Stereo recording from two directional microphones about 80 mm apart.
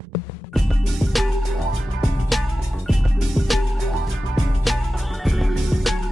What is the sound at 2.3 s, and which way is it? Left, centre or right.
Music, centre.